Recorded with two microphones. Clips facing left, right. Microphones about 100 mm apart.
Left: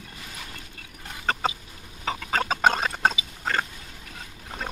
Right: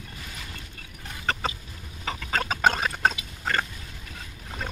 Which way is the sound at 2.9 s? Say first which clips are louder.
Left 1 dB; 15° left (ahead or behind).